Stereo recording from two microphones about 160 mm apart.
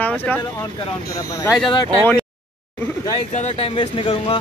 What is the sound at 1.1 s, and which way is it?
Speech, 20° left (ahead or behind).